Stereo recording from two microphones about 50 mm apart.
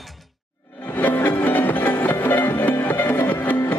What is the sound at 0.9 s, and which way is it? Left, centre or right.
Music, left.